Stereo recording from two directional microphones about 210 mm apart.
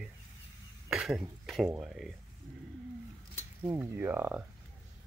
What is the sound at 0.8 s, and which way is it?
Speech, 5° right (ahead or behind).